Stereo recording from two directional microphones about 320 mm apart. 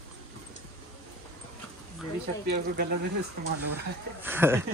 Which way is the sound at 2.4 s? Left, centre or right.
Right.